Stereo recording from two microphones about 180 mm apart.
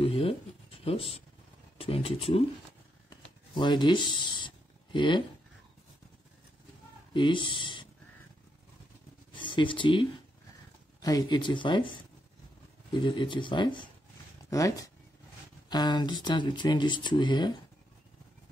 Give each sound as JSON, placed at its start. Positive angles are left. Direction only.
{"t": 0.0, "sound": "a sound", "side_deg": 30}
{"t": 1.8, "sound": "speech", "side_deg": 30}
{"t": 3.1, "sound": "a sound", "side_deg": 25}
{"t": 4.9, "sound": "speech", "side_deg": 25}
{"t": 7.2, "sound": "speech", "side_deg": 25}
{"t": 9.3, "sound": "speech", "side_deg": 25}